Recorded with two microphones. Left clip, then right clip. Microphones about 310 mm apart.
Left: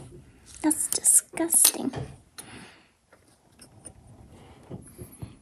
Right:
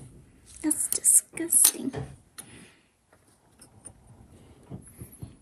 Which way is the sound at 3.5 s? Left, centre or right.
Centre.